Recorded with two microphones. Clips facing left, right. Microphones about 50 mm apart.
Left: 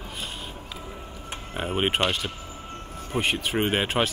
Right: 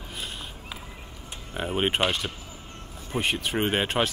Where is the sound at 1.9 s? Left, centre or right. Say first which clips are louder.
Even; centre.